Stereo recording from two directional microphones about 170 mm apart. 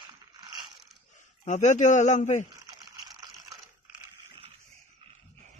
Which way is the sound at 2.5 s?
25° right (ahead or behind).